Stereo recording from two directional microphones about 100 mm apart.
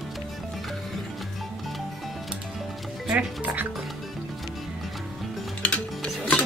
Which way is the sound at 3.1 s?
15° right (ahead or behind).